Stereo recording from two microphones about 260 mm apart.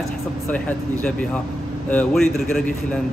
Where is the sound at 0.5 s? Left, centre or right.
Centre.